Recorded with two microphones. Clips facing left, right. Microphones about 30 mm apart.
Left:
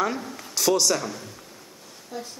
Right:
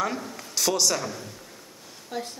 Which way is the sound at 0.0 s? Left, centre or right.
Centre.